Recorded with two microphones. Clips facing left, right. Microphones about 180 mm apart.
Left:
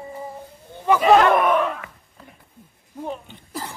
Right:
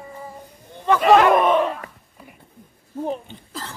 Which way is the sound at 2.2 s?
10° right (ahead or behind).